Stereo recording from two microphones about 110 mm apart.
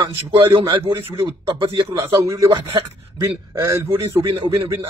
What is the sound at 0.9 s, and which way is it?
A man's voice, 25° right (ahead or behind).